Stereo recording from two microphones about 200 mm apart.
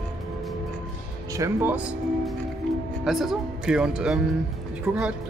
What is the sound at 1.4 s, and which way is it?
Speech, 10° right (ahead or behind).